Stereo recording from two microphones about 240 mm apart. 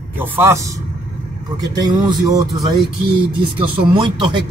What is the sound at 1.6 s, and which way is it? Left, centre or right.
Speech, centre.